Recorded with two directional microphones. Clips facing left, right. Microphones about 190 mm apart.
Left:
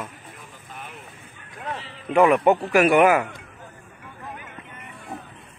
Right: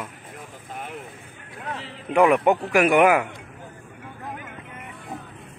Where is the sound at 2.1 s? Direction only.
10° right (ahead or behind).